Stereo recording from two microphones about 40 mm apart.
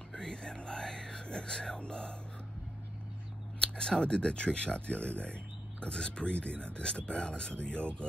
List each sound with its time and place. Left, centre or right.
0.2 s whispering: centre
1.8 s speech: left
3.5 s speech: left
4.7 s speech: left